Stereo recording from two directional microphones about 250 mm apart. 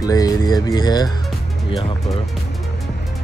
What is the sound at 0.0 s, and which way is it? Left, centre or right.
Music, centre.